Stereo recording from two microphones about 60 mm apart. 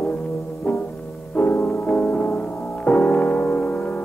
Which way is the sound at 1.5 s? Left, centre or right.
Left.